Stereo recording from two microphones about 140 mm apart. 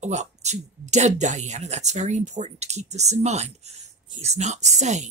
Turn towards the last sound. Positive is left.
turn(degrees=-55)  # may be behind; listen again after turning